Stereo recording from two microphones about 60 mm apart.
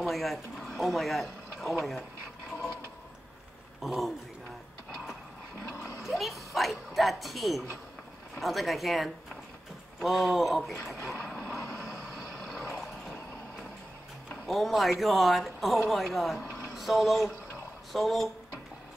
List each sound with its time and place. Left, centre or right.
0.0 s speech: centre
3.8 s speech: centre
6.0 s speech: centre
10.9 s vehicle: centre
14.3 s speech: centre